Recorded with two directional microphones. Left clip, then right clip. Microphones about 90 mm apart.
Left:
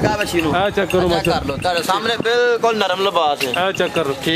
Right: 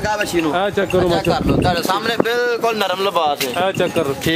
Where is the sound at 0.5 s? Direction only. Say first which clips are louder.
Left 2 dB; 10° left (ahead or behind).